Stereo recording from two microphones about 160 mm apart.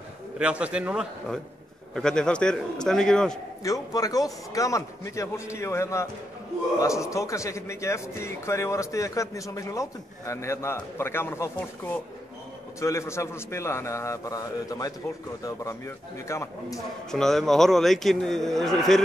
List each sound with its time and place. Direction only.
0.4 s a man's voice: 5° right (ahead or behind)
3.6 s a man's voice: 20° left (ahead or behind)
17.1 s a man's voice: 5° left (ahead or behind)